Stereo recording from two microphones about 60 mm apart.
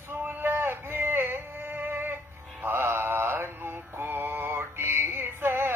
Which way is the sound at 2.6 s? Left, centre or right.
Right.